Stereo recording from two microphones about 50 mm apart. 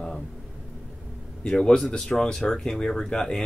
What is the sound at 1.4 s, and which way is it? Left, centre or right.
Speech, centre.